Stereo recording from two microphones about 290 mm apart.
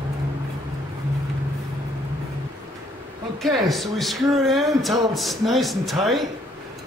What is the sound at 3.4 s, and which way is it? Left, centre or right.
Speech, centre.